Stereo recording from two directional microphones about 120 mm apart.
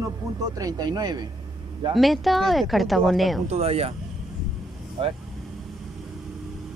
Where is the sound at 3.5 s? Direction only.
55° right (ahead or behind).